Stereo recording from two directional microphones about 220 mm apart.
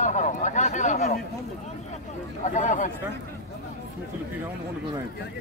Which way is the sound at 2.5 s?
35° left (ahead or behind).